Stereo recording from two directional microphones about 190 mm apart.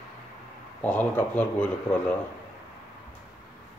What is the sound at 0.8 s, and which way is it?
Speech, 10° left (ahead or behind).